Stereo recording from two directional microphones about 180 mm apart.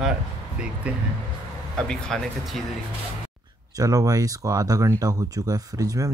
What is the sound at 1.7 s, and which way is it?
Speech, 5° left (ahead or behind).